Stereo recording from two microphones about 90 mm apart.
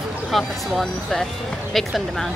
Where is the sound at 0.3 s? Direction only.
Centre (ahead or behind).